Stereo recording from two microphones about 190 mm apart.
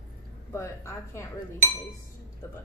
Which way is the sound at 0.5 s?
15° left (ahead or behind).